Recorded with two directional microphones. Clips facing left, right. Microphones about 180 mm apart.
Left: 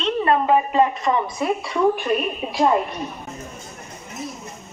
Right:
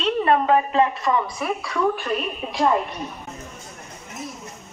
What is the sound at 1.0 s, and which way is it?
A woman's voice, 25° left (ahead or behind).